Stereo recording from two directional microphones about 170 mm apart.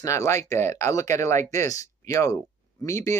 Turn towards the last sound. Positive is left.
turn(degrees=20)  # may be behind; listen again after turning